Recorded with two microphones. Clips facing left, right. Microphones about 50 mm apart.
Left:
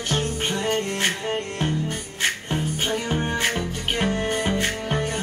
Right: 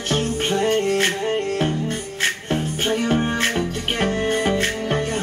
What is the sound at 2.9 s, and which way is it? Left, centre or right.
Music, right.